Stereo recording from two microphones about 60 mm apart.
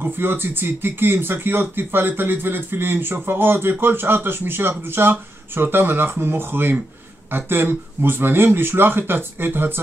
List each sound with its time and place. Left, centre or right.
0.0 s speech: right